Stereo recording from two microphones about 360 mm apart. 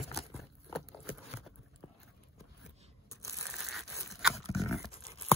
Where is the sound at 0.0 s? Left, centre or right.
Centre.